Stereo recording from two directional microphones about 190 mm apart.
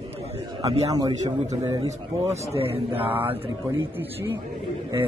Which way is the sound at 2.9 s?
10° right (ahead or behind).